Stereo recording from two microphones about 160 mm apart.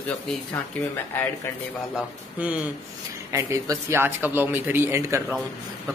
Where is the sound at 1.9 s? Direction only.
10° right (ahead or behind).